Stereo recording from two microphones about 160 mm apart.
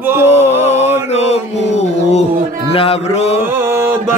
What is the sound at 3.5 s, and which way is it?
Music, 15° right (ahead or behind).